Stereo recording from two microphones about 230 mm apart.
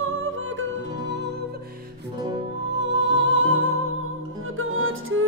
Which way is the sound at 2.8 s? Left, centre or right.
Right.